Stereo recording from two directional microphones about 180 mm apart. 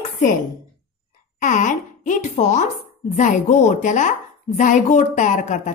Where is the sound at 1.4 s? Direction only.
45° left (ahead or behind).